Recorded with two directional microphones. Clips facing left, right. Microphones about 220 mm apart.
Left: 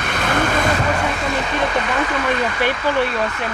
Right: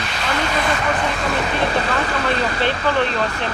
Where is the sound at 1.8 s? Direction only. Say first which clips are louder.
Even; 35° right (ahead or behind).